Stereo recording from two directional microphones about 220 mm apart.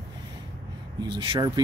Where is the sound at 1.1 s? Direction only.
20° right (ahead or behind).